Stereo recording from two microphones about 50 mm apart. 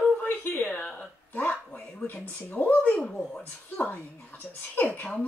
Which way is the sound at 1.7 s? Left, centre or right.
Left.